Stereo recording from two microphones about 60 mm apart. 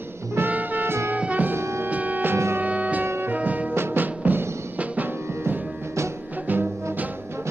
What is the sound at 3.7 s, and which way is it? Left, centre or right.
Music, right.